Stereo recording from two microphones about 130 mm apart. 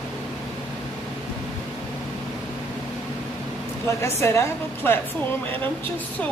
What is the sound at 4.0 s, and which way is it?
A woman's voice, 20° left (ahead or behind).